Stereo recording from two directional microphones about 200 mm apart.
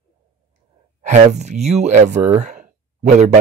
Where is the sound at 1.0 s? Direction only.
35° right (ahead or behind).